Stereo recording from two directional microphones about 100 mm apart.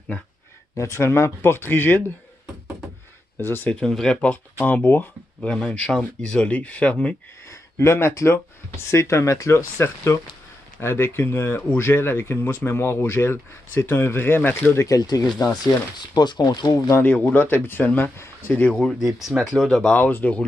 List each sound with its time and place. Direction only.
0.7 s speech: 30° left (ahead or behind)
3.3 s speech: 20° left (ahead or behind)
3.8 s speech: 5° left (ahead or behind)
5.5 s speech: 10° left (ahead or behind)
7.4 s speech: 25° left (ahead or behind)
15.0 s speech: 40° left (ahead or behind)
16.9 s speech: 20° left (ahead or behind)
18.9 s speech: centre (ahead or behind)
19.5 s speech: 5° left (ahead or behind)